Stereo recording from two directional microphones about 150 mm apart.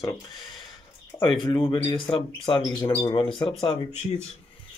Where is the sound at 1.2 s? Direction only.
35° left (ahead or behind).